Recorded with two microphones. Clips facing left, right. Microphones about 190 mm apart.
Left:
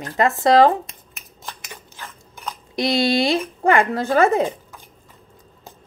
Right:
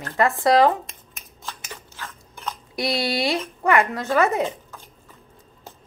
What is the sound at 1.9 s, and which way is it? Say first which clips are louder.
Chewing: even; 15° left (ahead or behind).